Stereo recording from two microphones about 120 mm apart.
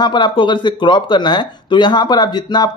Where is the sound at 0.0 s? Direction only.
40° left (ahead or behind).